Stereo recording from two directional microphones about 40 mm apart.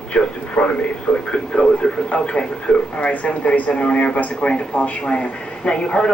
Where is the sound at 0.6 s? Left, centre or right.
Left.